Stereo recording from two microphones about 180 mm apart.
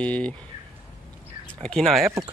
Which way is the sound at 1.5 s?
5° left (ahead or behind).